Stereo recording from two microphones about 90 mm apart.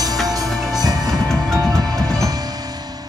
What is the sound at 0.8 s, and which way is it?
Music, 45° right (ahead or behind).